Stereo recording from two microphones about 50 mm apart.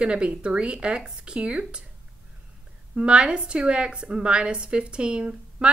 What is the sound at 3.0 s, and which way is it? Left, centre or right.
A woman's voice, centre.